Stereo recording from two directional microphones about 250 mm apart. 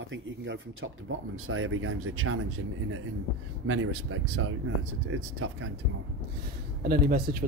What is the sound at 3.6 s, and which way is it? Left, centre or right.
Speech, right.